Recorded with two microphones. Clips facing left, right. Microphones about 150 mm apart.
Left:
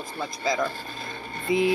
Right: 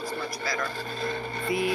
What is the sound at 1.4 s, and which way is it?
Speech, 20° left (ahead or behind).